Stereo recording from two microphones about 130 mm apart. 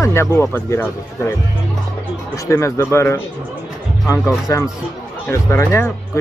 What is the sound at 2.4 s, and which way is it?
Speech, 20° left (ahead or behind).